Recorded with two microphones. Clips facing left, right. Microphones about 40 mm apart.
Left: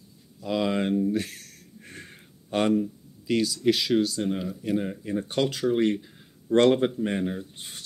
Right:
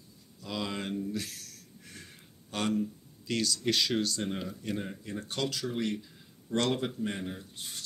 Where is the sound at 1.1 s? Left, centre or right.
Left.